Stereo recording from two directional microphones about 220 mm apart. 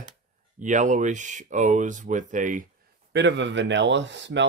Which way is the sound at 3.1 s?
55° right (ahead or behind).